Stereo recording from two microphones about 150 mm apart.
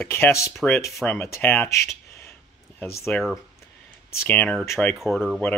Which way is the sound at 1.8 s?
20° left (ahead or behind).